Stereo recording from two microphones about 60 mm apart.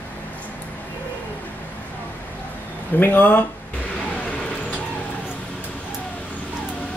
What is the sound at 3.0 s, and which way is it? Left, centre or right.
Speech, left.